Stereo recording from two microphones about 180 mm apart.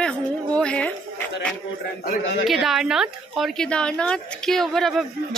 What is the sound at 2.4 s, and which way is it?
A woman's voice, centre (ahead or behind).